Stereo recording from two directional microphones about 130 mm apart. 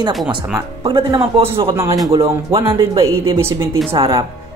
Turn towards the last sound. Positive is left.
turn(degrees=-40)  # may be behind; listen again after turning